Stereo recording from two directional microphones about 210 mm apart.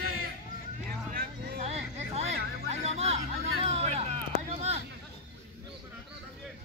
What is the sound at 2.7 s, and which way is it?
Music, 30° right (ahead or behind).